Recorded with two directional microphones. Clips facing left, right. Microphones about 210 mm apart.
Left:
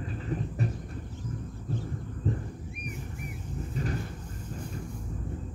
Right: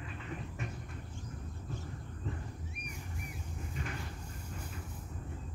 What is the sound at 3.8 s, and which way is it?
Cupboard open or close, 35° left (ahead or behind).